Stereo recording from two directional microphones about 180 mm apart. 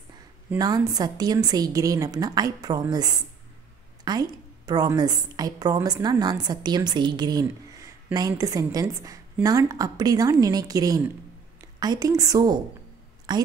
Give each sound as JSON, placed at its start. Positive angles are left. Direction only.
{"t": 0.6, "sound": "a woman's voice", "side_deg": -20}